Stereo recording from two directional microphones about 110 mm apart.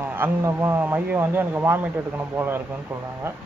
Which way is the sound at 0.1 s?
20° right (ahead or behind).